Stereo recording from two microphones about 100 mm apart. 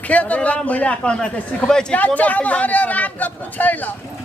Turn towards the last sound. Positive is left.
turn(degrees=15)  # may be behind; listen again after turning